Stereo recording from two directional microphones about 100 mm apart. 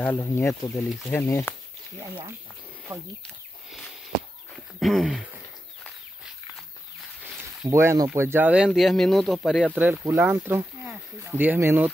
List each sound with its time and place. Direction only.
0.2 s speech: 30° left (ahead or behind)
2.9 s speech: 20° right (ahead or behind)
4.7 s speech: centre (ahead or behind)
7.6 s speech: 30° right (ahead or behind)
8.6 s speech: centre (ahead or behind)
9.8 s speech: 20° right (ahead or behind)